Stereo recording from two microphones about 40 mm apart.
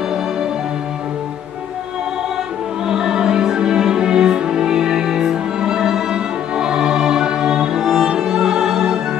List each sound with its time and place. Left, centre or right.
2.9 s music: centre